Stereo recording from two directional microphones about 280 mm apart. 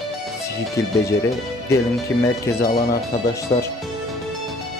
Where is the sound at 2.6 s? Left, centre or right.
Left.